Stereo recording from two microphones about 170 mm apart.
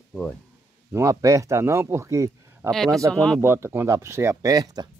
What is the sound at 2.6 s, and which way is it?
Speech, centre (ahead or behind).